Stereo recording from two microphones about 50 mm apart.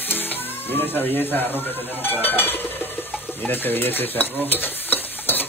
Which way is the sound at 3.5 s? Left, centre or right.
Left.